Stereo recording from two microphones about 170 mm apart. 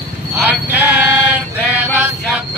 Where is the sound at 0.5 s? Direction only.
10° right (ahead or behind).